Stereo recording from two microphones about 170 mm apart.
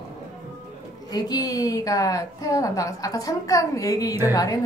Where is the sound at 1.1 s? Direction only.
20° left (ahead or behind).